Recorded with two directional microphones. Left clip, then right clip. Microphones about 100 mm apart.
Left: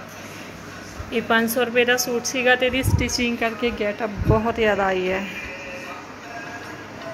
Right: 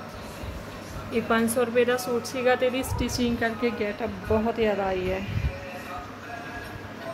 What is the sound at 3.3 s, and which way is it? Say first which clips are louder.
Speech: left 3 dB; 15° left (ahead or behind).